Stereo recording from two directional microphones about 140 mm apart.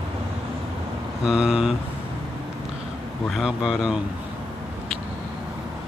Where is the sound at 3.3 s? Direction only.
Centre (ahead or behind).